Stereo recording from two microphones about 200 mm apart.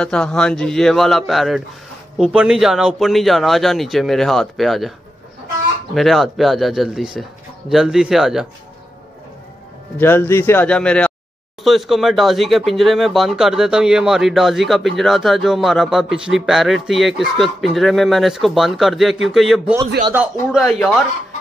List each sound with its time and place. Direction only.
0.0 s speech: 5° left (ahead or behind)
5.9 s speech: centre (ahead or behind)
9.9 s a man's voice: 10° left (ahead or behind)